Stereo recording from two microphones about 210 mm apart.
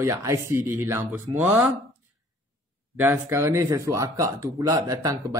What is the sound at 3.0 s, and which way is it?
Speech, 10° right (ahead or behind).